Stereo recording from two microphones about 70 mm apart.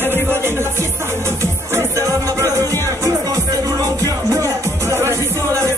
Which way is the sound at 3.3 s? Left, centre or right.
Right.